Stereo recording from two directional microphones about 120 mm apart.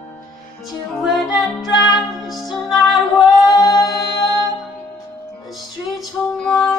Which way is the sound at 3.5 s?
35° left (ahead or behind).